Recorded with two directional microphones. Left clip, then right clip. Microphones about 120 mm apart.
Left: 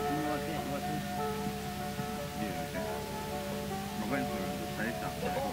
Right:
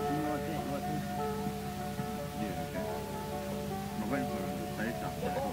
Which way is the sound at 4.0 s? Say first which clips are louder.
Left 1 dB; 20° left (ahead or behind).